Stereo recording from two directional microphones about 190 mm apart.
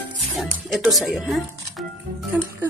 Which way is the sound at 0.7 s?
Centre (ahead or behind).